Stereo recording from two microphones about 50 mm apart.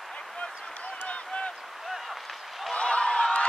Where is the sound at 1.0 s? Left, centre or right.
Left.